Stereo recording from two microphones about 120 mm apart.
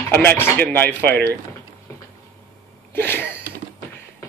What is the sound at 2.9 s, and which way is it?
Speech, 15° left (ahead or behind).